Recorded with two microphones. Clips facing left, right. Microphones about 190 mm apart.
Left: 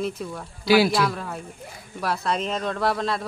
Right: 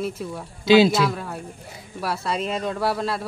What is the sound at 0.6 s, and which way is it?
Speech, 20° right (ahead or behind).